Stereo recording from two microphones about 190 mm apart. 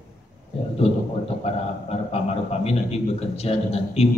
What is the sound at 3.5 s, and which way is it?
Speech, 30° left (ahead or behind).